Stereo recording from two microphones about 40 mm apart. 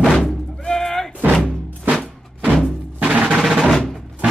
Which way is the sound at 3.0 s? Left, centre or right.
Right.